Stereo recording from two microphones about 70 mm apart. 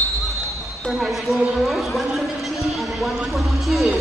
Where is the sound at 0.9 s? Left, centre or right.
Centre.